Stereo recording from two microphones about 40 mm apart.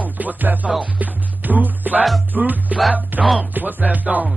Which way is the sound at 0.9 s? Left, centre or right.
Right.